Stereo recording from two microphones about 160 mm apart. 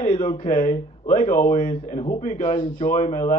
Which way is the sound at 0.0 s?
50° left (ahead or behind).